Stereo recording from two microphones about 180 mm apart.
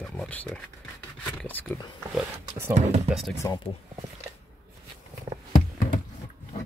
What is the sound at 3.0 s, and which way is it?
Speech, centre (ahead or behind).